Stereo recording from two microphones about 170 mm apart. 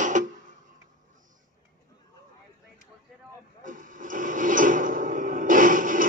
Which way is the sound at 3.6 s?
50° right (ahead or behind).